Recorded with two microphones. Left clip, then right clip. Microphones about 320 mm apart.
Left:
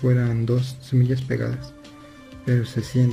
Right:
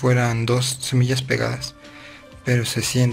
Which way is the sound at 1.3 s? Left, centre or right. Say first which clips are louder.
Right 6 dB; right.